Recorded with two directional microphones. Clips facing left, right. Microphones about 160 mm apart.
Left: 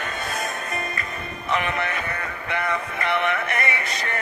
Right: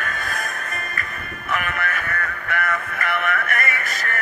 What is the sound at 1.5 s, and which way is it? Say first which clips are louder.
Music: left 1 dB; 20° left (ahead or behind).